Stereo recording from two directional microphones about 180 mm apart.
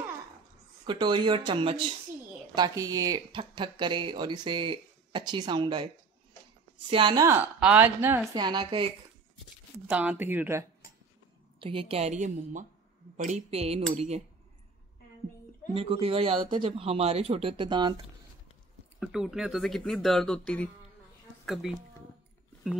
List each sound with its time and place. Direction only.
0.8 s speech: 25° right (ahead or behind)
6.9 s speech: 25° right (ahead or behind)
7.2 s speech: 10° right (ahead or behind)
8.3 s speech: 25° right (ahead or behind)
9.8 s speech: 10° right (ahead or behind)
11.6 s speech: 30° right (ahead or behind)
15.7 s speech: 35° right (ahead or behind)
18.9 s speech: centre (ahead or behind)